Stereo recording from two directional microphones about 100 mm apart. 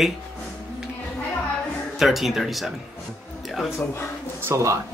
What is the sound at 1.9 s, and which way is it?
Speech, centre (ahead or behind).